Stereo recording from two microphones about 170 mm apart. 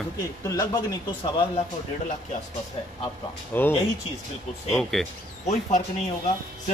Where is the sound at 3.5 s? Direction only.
10° left (ahead or behind).